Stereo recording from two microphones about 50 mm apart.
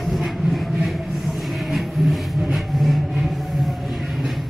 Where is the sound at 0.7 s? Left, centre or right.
Centre.